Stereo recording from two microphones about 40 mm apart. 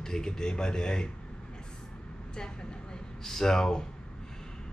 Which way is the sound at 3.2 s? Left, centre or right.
Centre.